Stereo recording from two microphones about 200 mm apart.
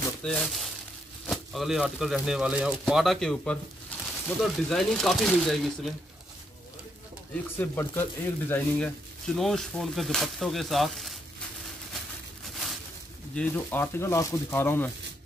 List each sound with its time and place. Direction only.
0.2 s speech: 5° left (ahead or behind)
3.9 s a sound: 10° left (ahead or behind)
4.4 s speech: centre (ahead or behind)
7.5 s speech: 10° left (ahead or behind)
13.3 s speech: 5° left (ahead or behind)